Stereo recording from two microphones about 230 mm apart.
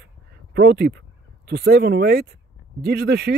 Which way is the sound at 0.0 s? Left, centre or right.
Right.